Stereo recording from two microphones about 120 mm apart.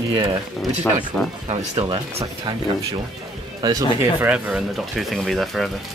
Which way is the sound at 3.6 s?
35° right (ahead or behind).